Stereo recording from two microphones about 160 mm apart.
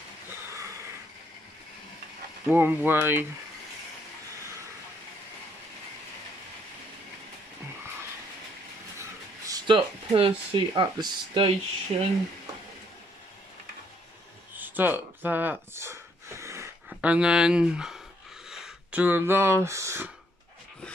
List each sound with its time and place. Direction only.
2.4 s speech: 10° right (ahead or behind)
9.5 s speech: 35° right (ahead or behind)
11.9 s speech: 45° right (ahead or behind)
14.6 s gasp: 10° right (ahead or behind)
18.5 s speech: 5° right (ahead or behind)